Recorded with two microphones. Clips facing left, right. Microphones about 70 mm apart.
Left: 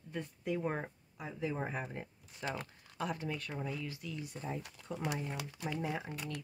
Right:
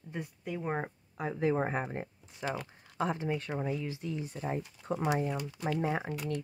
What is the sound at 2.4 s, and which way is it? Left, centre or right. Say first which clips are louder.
Speech: right 4 dB; centre.